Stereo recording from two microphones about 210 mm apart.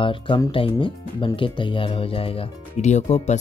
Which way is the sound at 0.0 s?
25° left (ahead or behind).